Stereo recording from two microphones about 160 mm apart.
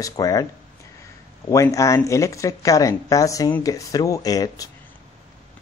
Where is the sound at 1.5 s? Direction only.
20° left (ahead or behind).